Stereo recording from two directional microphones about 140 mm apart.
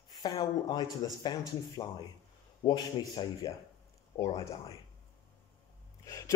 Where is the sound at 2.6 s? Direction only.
30° left (ahead or behind).